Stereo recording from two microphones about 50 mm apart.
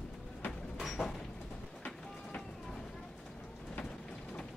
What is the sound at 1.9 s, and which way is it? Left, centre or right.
Vehicle, centre.